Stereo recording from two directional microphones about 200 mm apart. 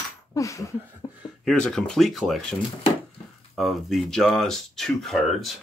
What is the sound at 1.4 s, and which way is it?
Speech, 5° left (ahead or behind).